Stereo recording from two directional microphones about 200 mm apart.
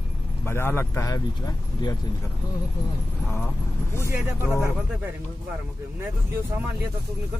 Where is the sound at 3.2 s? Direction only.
10° left (ahead or behind).